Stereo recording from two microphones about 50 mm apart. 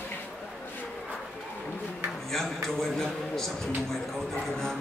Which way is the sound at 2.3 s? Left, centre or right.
Centre.